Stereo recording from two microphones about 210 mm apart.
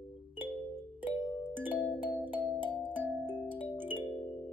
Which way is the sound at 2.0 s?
10° right (ahead or behind).